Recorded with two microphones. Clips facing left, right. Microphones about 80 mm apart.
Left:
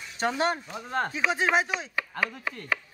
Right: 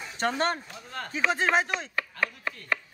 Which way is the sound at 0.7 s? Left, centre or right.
Left.